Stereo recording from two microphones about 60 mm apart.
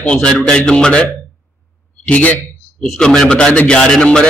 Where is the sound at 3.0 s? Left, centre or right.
Centre.